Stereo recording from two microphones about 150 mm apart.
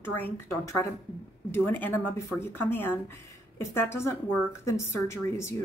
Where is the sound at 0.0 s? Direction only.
15° left (ahead or behind).